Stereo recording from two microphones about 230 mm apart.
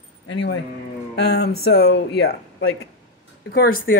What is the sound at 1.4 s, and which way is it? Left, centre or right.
Speech, left.